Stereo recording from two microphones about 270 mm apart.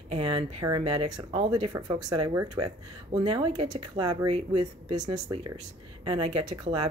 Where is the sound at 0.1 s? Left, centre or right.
Centre.